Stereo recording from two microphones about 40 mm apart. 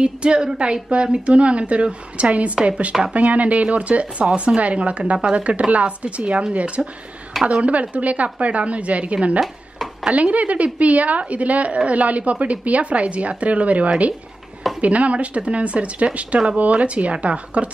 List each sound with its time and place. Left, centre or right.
0.0 s a woman's voice: right
3.2 s a woman's voice: right
7.3 s speech: centre
7.8 s a woman's voice: right